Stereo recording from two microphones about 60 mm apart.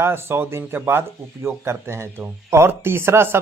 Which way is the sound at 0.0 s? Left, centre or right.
Right.